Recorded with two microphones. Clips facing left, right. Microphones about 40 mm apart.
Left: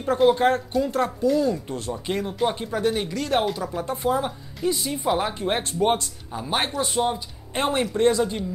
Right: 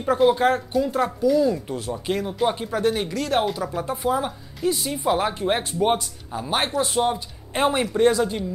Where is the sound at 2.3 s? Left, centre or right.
Centre.